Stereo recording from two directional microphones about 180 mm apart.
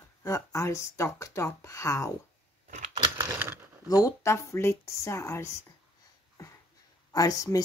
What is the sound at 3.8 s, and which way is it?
Speech, 20° left (ahead or behind).